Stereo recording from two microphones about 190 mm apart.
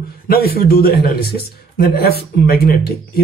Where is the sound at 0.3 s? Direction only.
50° left (ahead or behind).